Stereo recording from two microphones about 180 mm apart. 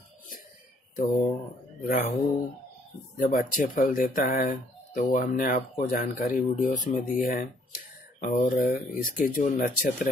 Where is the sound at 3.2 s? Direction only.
50° left (ahead or behind).